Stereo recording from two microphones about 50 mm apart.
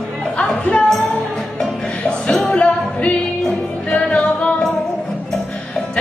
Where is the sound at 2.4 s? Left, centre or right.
Left.